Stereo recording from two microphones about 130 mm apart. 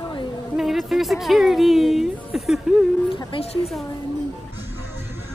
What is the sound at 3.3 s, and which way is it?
Speech, 40° left (ahead or behind).